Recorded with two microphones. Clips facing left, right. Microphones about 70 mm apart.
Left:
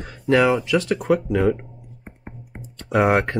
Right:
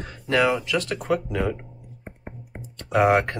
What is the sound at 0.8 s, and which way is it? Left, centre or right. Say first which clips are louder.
Speech: left 5 dB; centre.